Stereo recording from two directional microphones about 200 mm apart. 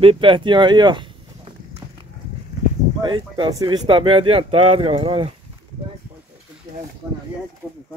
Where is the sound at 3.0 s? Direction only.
20° right (ahead or behind).